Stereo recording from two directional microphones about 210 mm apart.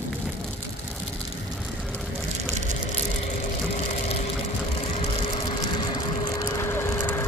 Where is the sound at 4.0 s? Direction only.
30° left (ahead or behind).